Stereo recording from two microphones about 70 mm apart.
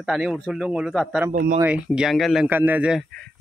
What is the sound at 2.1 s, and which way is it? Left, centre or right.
Speech, centre.